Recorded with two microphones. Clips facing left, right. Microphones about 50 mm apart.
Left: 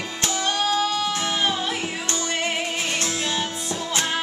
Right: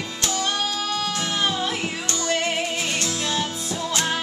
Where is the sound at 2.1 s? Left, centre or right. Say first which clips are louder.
Right 4 dB; left.